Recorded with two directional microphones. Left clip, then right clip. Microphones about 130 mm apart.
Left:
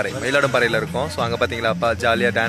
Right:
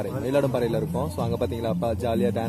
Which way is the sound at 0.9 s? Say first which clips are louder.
Left 6 dB; 35° left (ahead or behind).